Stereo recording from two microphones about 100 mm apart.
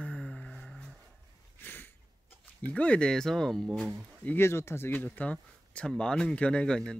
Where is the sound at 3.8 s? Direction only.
15° right (ahead or behind).